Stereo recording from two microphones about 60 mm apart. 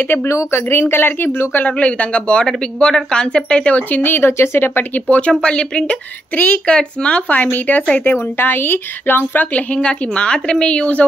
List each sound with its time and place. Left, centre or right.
0.3 s speech: left
1.8 s speech: left
5.4 s speech: centre
9.8 s speech: centre